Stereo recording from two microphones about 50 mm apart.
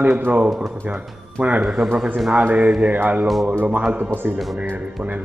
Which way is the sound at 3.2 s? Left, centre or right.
Centre.